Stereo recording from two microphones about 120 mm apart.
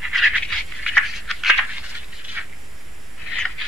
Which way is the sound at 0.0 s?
Centre (ahead or behind).